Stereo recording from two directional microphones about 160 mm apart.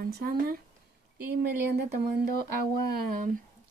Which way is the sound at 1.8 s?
80° right.